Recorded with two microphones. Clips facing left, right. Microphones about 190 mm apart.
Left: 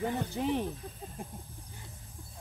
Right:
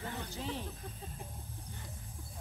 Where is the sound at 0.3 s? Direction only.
60° left (ahead or behind).